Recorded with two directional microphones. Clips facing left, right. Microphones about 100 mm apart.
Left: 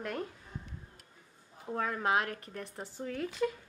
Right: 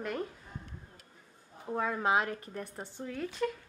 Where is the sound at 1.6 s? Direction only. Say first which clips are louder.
Right 2 dB; 10° right (ahead or behind).